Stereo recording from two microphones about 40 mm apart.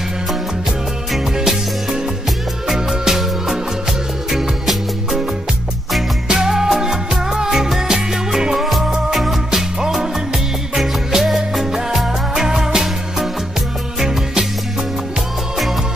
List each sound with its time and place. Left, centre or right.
1.1 s music: centre
2.7 s music: centre
6.2 s music: centre